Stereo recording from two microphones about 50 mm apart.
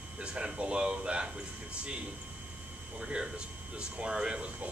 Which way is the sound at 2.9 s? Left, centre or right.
Centre.